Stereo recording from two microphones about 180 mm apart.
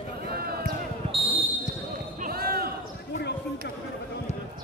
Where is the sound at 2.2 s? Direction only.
55° right (ahead or behind).